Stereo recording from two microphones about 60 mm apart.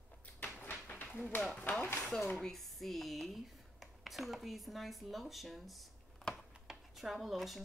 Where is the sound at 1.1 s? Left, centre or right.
Left.